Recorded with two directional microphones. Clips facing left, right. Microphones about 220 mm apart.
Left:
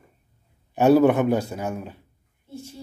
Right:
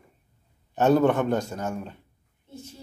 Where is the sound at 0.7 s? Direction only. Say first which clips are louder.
Left 4 dB; 10° left (ahead or behind).